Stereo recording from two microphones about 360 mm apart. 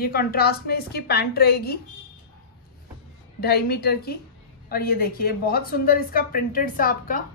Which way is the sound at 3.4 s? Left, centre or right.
Left.